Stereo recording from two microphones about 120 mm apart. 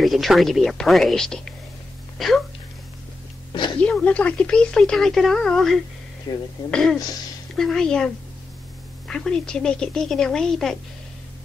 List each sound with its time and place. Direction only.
0.0 s speech: centre (ahead or behind)
3.8 s speech: 10° left (ahead or behind)
6.3 s speech: 35° left (ahead or behind)
6.7 s speech: 5° left (ahead or behind)